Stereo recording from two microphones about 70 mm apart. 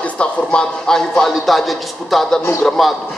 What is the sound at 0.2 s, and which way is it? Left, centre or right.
A man's voice, centre.